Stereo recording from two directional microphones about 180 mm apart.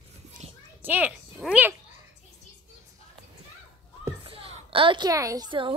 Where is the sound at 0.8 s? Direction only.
10° right (ahead or behind).